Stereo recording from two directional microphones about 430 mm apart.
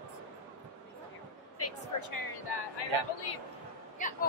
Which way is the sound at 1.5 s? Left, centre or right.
Left.